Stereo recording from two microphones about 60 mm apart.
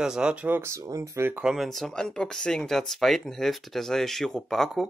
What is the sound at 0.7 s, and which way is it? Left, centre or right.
Speech, right.